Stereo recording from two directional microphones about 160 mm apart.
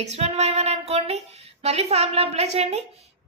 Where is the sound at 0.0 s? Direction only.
45° right (ahead or behind).